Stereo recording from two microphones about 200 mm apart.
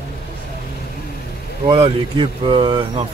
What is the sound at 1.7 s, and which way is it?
Speech, 25° right (ahead or behind).